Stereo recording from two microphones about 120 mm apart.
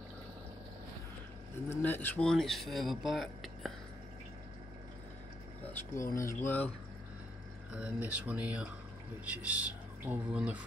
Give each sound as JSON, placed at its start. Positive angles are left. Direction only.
{"t": 1.7, "sound": "speech", "side_deg": 15}
{"t": 5.7, "sound": "speech", "side_deg": 25}
{"t": 7.7, "sound": "speech", "side_deg": -10}